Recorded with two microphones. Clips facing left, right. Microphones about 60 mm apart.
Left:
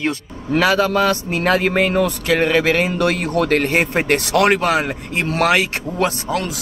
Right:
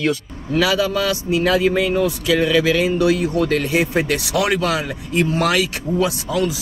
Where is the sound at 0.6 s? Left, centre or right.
Left.